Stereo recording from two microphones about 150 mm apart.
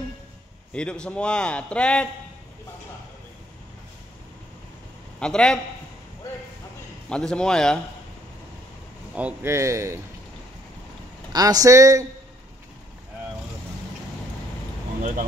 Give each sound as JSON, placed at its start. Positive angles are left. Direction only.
{"t": 0.7, "sound": "a man's voice", "side_deg": 5}
{"t": 5.2, "sound": "a man's voice", "side_deg": 5}
{"t": 7.1, "sound": "a man's voice", "side_deg": 5}
{"t": 9.1, "sound": "a man's voice", "side_deg": -10}
{"t": 11.3, "sound": "a man's voice", "side_deg": -25}
{"t": 15.0, "sound": "speech", "side_deg": -65}